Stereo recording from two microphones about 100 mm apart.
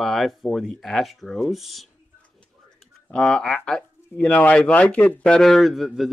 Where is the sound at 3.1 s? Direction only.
10° left (ahead or behind).